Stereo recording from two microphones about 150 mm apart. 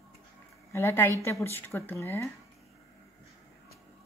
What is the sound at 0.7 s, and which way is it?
A woman's voice, 15° left (ahead or behind).